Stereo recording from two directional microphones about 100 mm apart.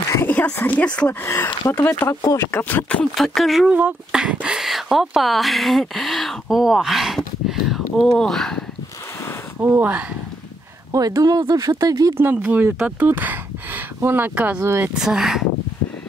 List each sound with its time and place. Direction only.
0.3 s speech: 15° left (ahead or behind)
1.2 s speech: 25° left (ahead or behind)
3.2 s speech: centre (ahead or behind)
3.6 s speech: 10° right (ahead or behind); by 8.6 s 5° left (ahead or behind)
9.6 s speech: 15° right (ahead or behind)
10.9 s speech: 35° right (ahead or behind)
12.2 s speech: 15° right (ahead or behind)
14.6 s speech: 25° right (ahead or behind)
15.0 s speech: 5° right (ahead or behind)